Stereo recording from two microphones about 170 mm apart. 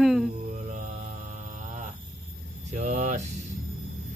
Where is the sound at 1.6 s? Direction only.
45° right (ahead or behind).